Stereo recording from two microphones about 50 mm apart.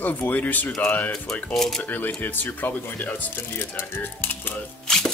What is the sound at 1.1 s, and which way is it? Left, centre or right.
Speech, centre.